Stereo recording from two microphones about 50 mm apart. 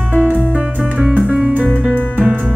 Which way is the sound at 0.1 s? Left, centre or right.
Right.